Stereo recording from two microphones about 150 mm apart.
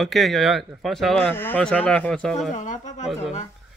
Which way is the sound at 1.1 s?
15° left (ahead or behind).